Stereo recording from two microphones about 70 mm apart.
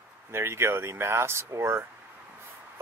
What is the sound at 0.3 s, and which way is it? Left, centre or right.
Speech, right.